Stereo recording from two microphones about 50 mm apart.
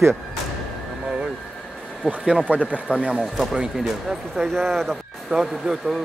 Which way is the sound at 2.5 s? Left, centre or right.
Right.